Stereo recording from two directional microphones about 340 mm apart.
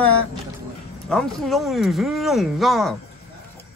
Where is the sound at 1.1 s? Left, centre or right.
Centre.